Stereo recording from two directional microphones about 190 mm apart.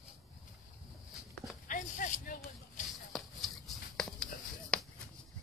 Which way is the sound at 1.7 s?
40° left (ahead or behind).